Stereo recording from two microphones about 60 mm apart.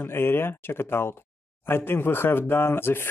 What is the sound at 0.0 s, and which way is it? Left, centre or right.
Speech, left.